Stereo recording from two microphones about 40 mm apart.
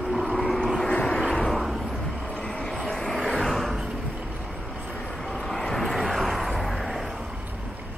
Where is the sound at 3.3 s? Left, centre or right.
Centre.